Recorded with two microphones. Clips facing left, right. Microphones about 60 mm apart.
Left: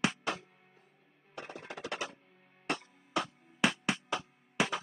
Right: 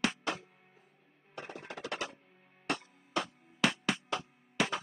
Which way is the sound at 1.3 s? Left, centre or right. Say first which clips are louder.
Even; centre.